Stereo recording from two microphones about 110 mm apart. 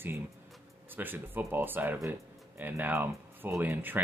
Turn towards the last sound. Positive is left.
turn(degrees=-15)  # may be behind; listen again after turning